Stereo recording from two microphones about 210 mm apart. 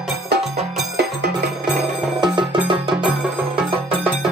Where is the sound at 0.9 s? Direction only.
50° right (ahead or behind).